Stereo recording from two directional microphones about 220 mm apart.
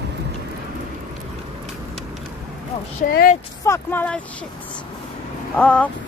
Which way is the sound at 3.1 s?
45° left (ahead or behind).